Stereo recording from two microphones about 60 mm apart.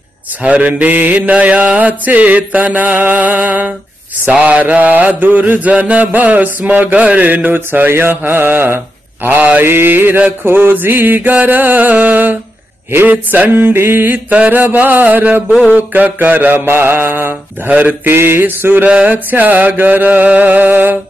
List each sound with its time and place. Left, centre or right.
0.4 s mantra: right
14.1 s mantra: right
17.6 s mantra: right
18.0 s mantra: right